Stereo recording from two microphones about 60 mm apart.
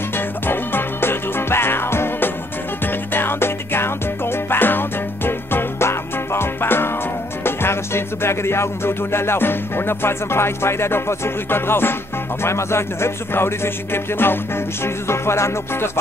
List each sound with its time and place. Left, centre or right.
0.5 s music: left